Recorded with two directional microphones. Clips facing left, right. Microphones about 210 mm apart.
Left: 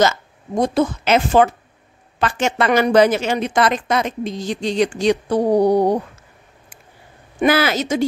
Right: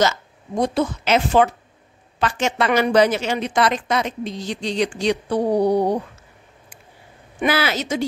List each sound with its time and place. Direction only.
0.6 s a woman's voice: 50° left (ahead or behind)
7.3 s a woman's voice: 45° left (ahead or behind)